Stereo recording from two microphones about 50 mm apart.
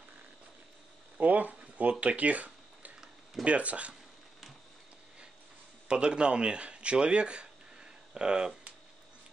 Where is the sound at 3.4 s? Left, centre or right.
Right.